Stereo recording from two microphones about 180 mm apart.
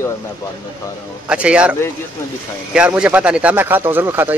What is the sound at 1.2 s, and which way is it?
Speech, 5° right (ahead or behind).